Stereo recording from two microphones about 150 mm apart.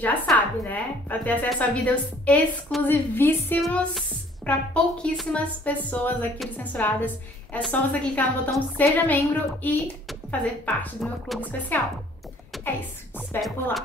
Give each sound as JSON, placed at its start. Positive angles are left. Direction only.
{"t": 0.0, "sound": "speech", "side_deg": 10}
{"t": 3.6, "sound": "speech", "side_deg": 0}
{"t": 11.7, "sound": "speech", "side_deg": 10}